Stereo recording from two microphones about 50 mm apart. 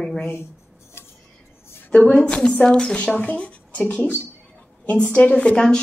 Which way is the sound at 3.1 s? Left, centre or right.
Left.